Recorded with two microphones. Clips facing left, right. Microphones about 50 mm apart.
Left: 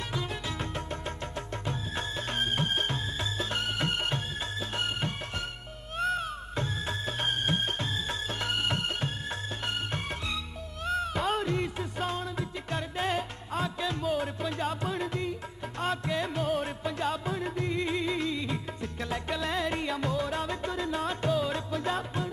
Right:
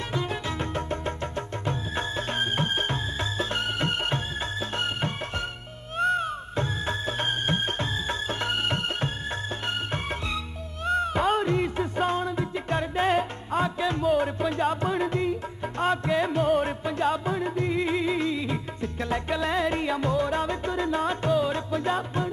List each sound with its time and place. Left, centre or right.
0.1 s music: centre
5.9 s music: centre
6.6 s music: centre
10.9 s music: centre